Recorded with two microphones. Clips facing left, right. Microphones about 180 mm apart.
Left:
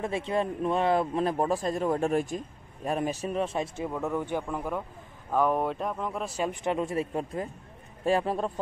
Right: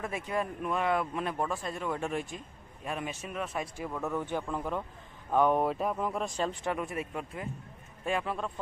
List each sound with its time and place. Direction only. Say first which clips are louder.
0.0 s speech: left 5 dB; 25° left (ahead or behind)
3.9 s a man's voice: left 2 dB; 15° left (ahead or behind); by 8.5 s 35° left (ahead or behind)